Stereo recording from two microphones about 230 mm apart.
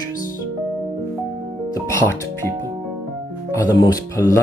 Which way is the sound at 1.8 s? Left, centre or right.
Centre.